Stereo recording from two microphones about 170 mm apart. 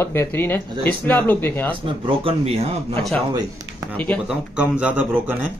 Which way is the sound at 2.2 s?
35° right (ahead or behind).